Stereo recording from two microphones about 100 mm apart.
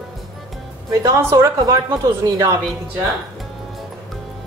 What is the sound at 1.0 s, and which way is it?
A woman's voice, 35° right (ahead or behind).